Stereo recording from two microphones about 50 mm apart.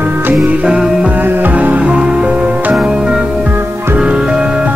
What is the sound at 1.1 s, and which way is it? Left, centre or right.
Music, right.